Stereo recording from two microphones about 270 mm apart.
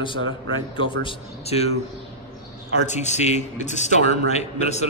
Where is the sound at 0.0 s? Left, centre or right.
Centre.